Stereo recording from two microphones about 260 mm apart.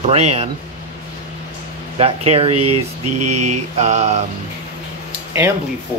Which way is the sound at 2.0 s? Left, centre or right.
Right.